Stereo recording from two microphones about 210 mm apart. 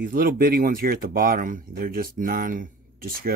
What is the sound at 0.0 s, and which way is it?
Speech, 45° right (ahead or behind).